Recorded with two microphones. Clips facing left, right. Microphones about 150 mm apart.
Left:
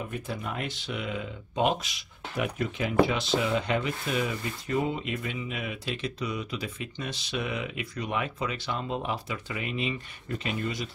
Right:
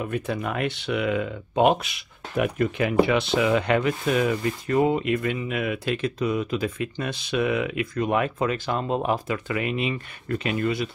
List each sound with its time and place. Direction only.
0.1 s speech: 70° right (ahead or behind); by 2.9 s 55° right (ahead or behind)
3.1 s speech: 65° right (ahead or behind); by 9.4 s 45° right (ahead or behind)
9.5 s speech: 70° right (ahead or behind)